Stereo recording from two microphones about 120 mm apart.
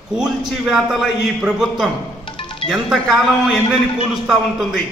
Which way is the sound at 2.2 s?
45° left (ahead or behind).